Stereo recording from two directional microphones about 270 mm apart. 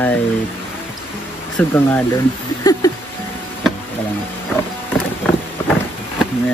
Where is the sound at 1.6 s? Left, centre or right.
Centre.